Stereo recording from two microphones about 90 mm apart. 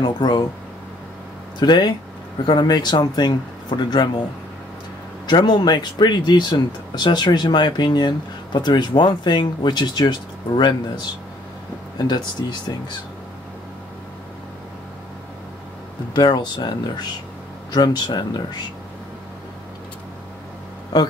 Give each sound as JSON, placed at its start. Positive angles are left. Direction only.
{"t": 0.0, "sound": "speech", "side_deg": 55}
{"t": 1.6, "sound": "speech", "side_deg": 55}
{"t": 5.2, "sound": "speech", "side_deg": 55}
{"t": 16.1, "sound": "speech", "side_deg": 55}
{"t": 17.7, "sound": "speech", "side_deg": 50}
{"t": 20.9, "sound": "speech", "side_deg": 55}